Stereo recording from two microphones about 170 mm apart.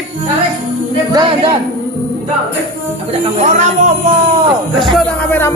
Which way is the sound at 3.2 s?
45° right (ahead or behind).